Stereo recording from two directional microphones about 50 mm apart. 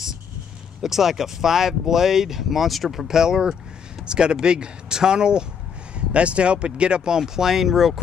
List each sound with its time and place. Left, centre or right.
0.8 s speech: centre
7.2 s speech: centre